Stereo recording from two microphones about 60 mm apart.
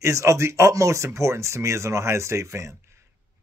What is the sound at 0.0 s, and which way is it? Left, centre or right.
Speech, right.